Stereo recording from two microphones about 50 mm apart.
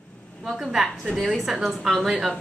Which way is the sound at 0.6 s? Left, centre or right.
Centre.